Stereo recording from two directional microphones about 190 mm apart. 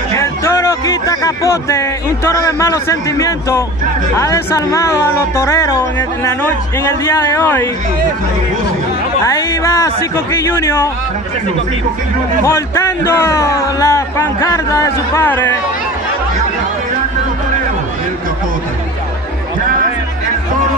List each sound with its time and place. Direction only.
0.1 s speech: 15° left (ahead or behind)
9.2 s speech: 15° left (ahead or behind)
12.4 s speech: 15° left (ahead or behind)